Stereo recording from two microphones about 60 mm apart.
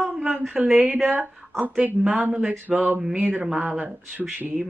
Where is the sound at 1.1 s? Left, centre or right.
Right.